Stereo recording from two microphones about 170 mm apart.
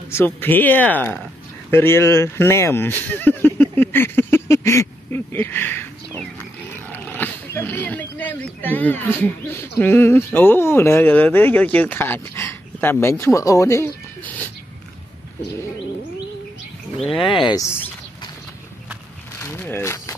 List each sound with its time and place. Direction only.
0.1 s speech: 15° left (ahead or behind)
17.1 s speech: 30° left (ahead or behind)
19.4 s speech: 15° left (ahead or behind)